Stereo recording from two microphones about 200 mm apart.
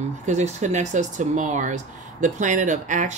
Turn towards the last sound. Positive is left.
turn(degrees=-40)  # may be behind; listen again after turning